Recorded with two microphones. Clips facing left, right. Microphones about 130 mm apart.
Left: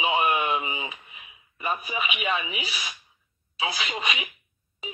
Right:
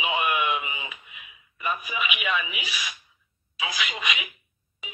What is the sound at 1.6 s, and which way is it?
Speech, 35° left (ahead or behind).